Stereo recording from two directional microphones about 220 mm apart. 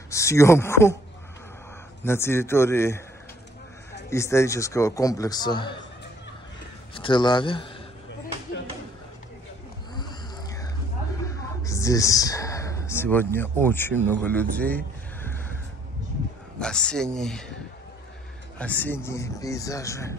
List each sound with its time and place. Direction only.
0.1 s a man's voice: 15° left (ahead or behind)
2.0 s a man's voice: 10° left (ahead or behind)
4.1 s a man's voice: 15° left (ahead or behind)
6.9 s speech: 20° left (ahead or behind)
9.9 s a sound: 20° left (ahead or behind)
11.2 s speech: 15° left (ahead or behind)
16.5 s speech: 5° left (ahead or behind)
18.6 s a man's voice: 5° left (ahead or behind)